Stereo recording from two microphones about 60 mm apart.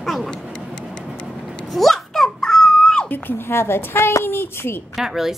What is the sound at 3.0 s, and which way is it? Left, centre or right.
A woman's voice, left.